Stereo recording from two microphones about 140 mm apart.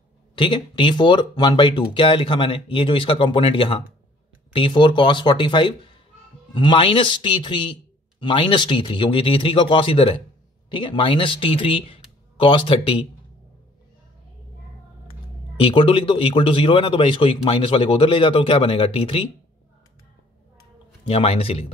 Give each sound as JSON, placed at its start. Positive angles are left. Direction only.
{"t": 0.4, "sound": "a man's voice", "side_deg": 35}
{"t": 15.6, "sound": "a man's voice", "side_deg": 35}
{"t": 21.0, "sound": "speech", "side_deg": 45}